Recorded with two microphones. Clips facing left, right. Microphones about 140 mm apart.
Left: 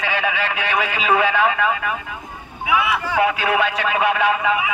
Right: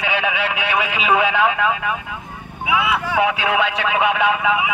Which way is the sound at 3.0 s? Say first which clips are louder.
Even; 5° right (ahead or behind).